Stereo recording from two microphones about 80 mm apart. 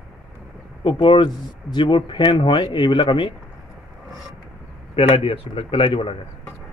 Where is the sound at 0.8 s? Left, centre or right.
Left.